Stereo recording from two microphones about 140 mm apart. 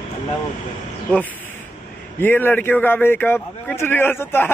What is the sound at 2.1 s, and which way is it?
A man's voice, 15° left (ahead or behind).